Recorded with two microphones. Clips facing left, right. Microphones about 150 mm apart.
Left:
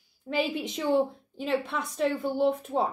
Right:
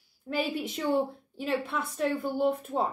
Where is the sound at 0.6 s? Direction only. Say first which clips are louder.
Left 1 dB; 5° right (ahead or behind).